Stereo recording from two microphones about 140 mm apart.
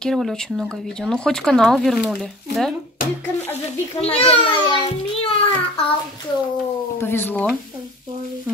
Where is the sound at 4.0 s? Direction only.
45° left (ahead or behind).